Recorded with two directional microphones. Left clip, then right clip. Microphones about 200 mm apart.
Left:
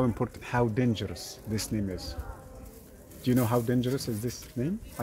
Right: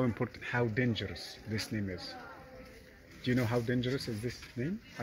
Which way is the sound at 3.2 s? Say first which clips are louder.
Left 5 dB; 20° left (ahead or behind).